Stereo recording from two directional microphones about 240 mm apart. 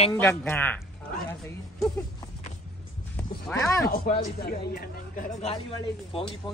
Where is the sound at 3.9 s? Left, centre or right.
Left.